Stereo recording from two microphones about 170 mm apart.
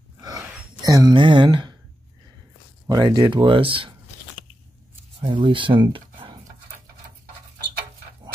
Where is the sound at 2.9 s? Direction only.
25° right (ahead or behind).